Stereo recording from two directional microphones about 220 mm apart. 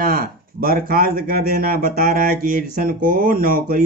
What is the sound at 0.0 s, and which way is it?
Speech, 40° right (ahead or behind).